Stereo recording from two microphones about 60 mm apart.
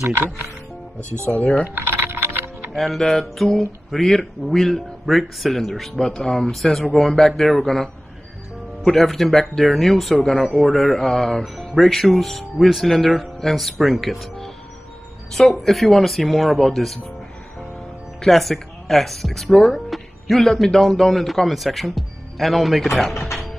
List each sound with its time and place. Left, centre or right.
1.8 s typing: right
2.7 s speech: centre
18.2 s speech: centre